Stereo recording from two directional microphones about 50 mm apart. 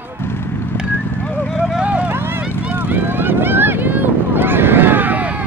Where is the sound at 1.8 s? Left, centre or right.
Right.